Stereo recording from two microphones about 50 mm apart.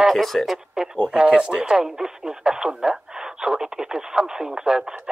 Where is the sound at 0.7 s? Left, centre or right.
Centre.